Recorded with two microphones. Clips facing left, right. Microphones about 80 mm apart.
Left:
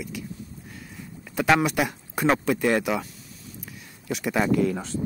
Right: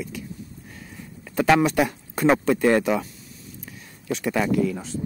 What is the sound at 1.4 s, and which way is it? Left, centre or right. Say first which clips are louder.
Speech: right 3 dB; centre.